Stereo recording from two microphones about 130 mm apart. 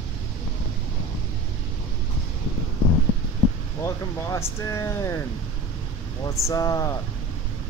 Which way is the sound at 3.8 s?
25° left (ahead or behind).